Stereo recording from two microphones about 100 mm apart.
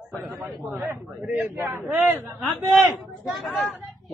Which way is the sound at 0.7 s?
20° right (ahead or behind).